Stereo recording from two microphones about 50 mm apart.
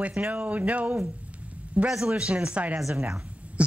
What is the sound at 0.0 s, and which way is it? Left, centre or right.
Speech, right.